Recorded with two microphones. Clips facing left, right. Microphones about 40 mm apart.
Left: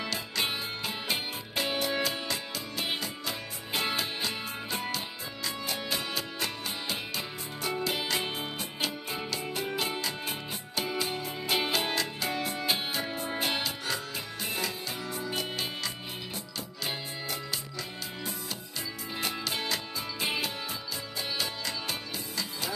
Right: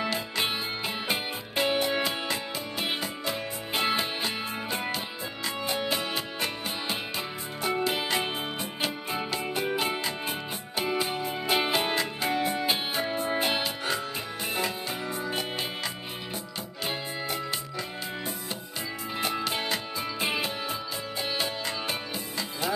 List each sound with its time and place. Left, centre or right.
0.0 s music: centre
19.1 s music: centre